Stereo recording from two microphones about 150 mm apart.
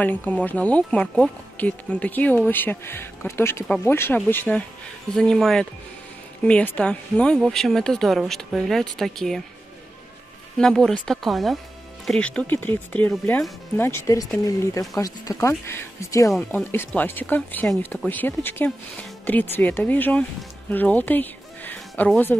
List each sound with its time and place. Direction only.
0.0 s speech: 10° left (ahead or behind)
10.6 s speech: 5° left (ahead or behind)